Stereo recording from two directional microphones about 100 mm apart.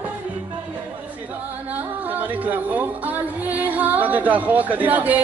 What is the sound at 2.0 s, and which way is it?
Music, 15° right (ahead or behind).